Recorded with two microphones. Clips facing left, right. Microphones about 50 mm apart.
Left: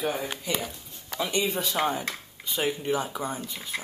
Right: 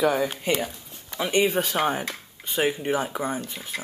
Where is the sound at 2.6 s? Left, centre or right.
Right.